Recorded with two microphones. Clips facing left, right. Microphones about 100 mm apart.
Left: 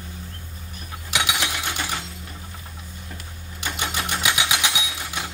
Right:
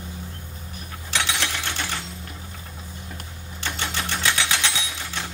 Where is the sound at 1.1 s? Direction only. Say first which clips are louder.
Left 1 dB; 15° left (ahead or behind).